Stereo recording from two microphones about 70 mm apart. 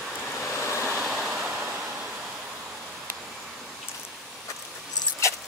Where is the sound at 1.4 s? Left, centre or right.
Right.